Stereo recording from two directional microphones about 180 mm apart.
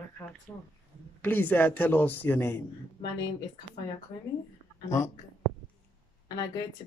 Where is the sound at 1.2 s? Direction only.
10° left (ahead or behind).